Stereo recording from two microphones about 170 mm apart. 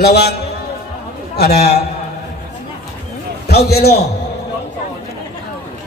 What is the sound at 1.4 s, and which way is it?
Speech, 70° left (ahead or behind).